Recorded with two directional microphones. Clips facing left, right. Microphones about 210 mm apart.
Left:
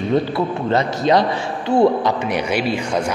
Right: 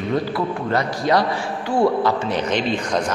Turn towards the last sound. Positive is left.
turn(degrees=10)  # may be behind; listen again after turning